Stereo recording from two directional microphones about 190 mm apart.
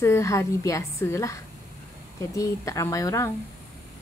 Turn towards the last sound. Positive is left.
turn(degrees=15)  # may be behind; listen again after turning